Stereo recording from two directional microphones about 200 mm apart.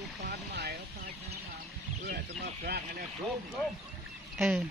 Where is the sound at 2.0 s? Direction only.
50° right (ahead or behind).